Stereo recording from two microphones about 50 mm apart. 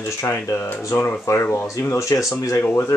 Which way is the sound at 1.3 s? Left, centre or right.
Left.